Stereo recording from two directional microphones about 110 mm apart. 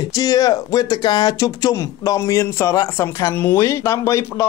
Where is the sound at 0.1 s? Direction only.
35° left (ahead or behind).